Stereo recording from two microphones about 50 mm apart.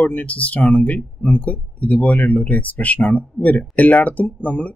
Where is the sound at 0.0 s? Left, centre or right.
Left.